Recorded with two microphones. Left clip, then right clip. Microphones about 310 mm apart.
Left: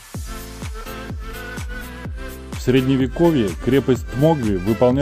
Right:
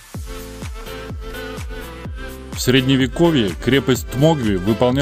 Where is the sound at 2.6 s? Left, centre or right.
Right.